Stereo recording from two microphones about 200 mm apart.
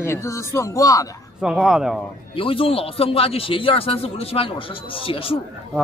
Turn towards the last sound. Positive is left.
turn(degrees=25)  # may be behind; listen again after turning